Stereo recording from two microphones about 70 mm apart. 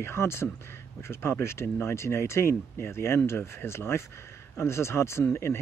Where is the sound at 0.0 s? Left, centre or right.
Left.